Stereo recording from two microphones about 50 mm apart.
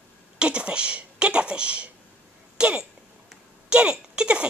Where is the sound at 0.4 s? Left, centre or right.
Right.